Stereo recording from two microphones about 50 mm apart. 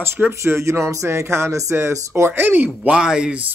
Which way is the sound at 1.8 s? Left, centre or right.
Right.